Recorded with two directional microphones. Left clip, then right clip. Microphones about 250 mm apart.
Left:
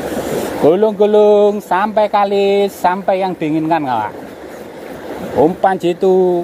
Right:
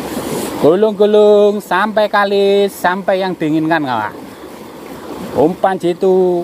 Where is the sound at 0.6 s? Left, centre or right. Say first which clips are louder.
Right 1 dB; centre.